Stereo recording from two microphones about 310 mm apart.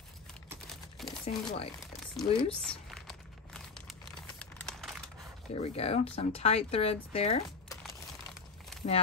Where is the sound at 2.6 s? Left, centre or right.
Centre.